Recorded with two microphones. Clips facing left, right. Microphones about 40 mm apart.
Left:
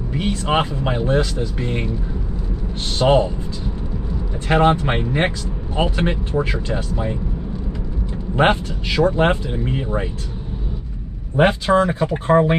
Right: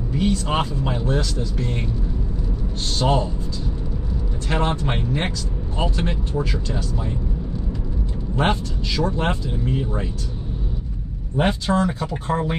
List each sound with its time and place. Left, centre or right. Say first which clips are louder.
0.1 s speech: left 2 dB; left
3.0 s speech: left 6 dB; left
4.5 s speech: left 7 dB; left
8.4 s speech: left 5 dB; left
11.3 s speech: left 5 dB; left